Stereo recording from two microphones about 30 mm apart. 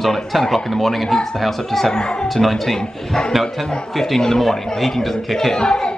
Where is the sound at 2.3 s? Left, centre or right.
Centre.